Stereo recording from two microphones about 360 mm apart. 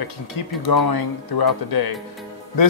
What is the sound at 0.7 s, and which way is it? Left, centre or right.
Speech, left.